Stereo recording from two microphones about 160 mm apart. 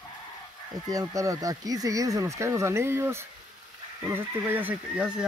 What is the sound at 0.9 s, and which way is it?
Speech, 20° right (ahead or behind).